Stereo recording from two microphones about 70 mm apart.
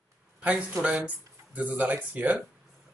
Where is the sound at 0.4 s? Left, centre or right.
Right.